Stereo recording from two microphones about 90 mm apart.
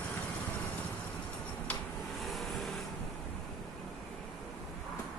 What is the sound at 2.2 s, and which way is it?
Vehicle, centre (ahead or behind).